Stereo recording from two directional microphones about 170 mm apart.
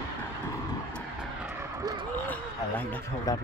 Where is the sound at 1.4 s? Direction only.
15° right (ahead or behind).